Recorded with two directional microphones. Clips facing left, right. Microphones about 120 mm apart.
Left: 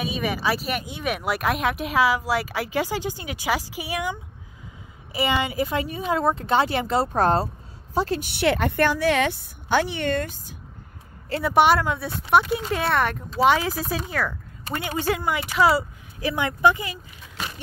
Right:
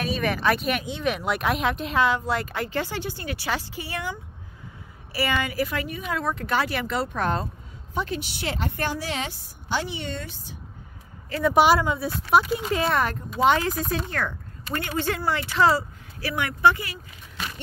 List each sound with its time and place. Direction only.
0.0 s a woman's voice: 5° left (ahead or behind); by 8.2 s 35° left (ahead or behind)
8.2 s a woman's voice: 65° left (ahead or behind)
11.4 s speech: centre (ahead or behind); by 17.0 s 20° left (ahead or behind)